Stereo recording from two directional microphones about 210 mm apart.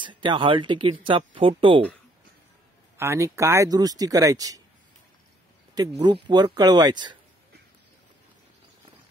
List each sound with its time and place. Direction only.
0.0 s speech: 20° right (ahead or behind)
3.0 s speech: 15° right (ahead or behind)
5.9 s speech: 25° right (ahead or behind)